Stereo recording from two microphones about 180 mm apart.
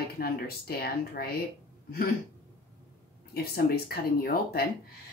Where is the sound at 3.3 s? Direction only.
60° left (ahead or behind).